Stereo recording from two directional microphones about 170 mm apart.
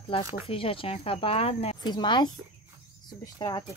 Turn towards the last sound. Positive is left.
turn(degrees=25)  # may be behind; listen again after turning